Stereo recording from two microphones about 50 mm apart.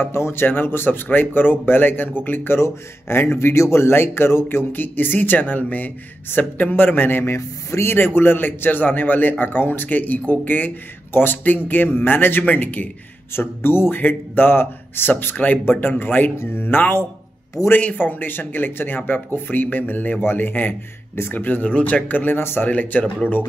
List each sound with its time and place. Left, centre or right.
0.0 s a man's voice: left
7.2 s speech: left
7.9 s a man's voice: left
13.4 s a man's voice: left
15.6 s a man's voice: left
17.6 s speech: centre
17.9 s a man's voice: left
21.6 s a man's voice: left
22.7 s a man's voice: left